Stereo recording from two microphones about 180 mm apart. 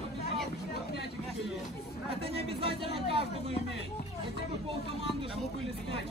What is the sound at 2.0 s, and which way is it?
Speech, 30° right (ahead or behind).